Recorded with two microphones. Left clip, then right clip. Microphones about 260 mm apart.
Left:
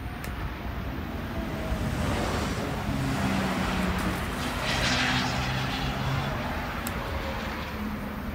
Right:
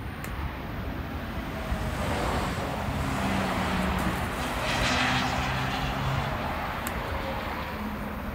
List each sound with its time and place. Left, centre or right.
2.1 s waves: right
3.3 s vehicle: right
4.4 s vehicle: right